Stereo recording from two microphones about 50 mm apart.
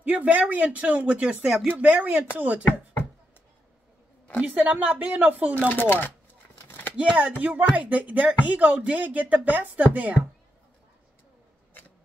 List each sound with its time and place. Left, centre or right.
0.0 s speech: right
1.4 s speech: centre
1.8 s speech: right
4.5 s speech: right
5.7 s speech: left
7.0 s speech: right